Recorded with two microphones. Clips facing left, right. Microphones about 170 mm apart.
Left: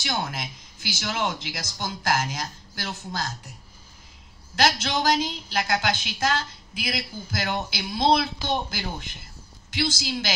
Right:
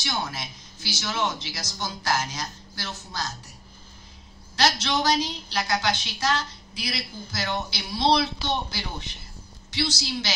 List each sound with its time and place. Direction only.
0.0 s a woman's voice: 55° left (ahead or behind)
4.6 s a woman's voice: 50° left (ahead or behind)